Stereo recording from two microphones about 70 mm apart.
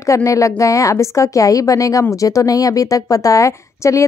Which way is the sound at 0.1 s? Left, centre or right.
Left.